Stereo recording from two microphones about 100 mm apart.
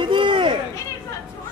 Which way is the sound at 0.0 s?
55° right (ahead or behind).